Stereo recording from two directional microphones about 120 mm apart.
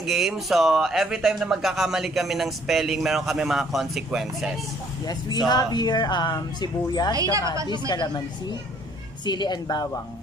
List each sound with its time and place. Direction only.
0.0 s speech: centre (ahead or behind)
5.0 s speech: 35° left (ahead or behind)
7.2 s a woman's voice: 30° right (ahead or behind)
7.9 s speech: 35° left (ahead or behind)